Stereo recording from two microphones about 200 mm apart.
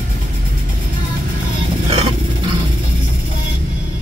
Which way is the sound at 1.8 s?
30° right (ahead or behind).